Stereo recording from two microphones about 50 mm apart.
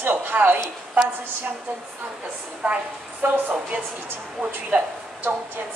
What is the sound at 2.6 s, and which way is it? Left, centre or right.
A woman's voice, right.